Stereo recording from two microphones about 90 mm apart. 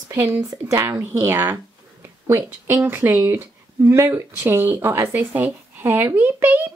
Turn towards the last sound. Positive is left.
turn(degrees=-20)  # may be behind; listen again after turning